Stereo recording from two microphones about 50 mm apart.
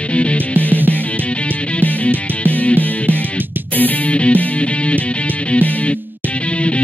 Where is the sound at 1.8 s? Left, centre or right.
Left.